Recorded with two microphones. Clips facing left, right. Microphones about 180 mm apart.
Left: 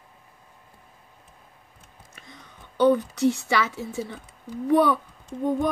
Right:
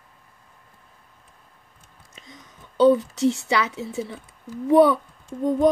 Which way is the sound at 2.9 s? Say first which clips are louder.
Right 2 dB; 20° right (ahead or behind).